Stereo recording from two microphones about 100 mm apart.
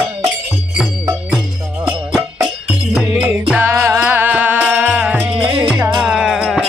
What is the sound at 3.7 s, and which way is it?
Music, 30° right (ahead or behind).